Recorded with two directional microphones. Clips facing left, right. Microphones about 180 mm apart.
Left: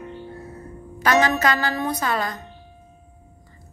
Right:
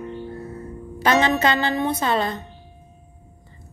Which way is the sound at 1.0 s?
25° right (ahead or behind).